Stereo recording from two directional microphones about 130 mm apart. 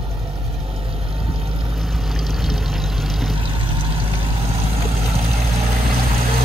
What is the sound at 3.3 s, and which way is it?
Vehicle, 40° right (ahead or behind).